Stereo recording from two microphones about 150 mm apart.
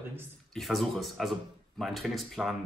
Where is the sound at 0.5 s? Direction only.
Centre (ahead or behind).